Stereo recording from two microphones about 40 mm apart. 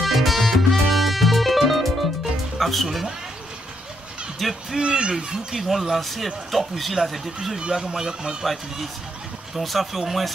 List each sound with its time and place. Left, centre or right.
0.0 s music: centre
2.6 s speech: centre
4.4 s speech: centre
4.7 s speech: right
5.5 s speech: centre
7.5 s speech: centre
9.6 s speech: centre